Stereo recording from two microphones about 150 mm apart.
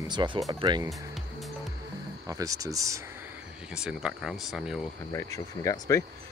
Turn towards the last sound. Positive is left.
turn(degrees=20)  # may be behind; listen again after turning